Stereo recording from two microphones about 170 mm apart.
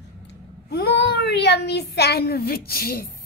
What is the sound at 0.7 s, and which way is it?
A child's voice, 75° left (ahead or behind).